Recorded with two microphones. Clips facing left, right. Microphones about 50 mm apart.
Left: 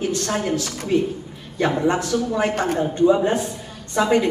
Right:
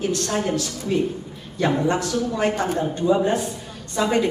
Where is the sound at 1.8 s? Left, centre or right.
Left.